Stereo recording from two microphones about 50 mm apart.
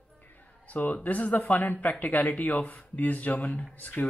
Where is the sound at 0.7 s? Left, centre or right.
Left.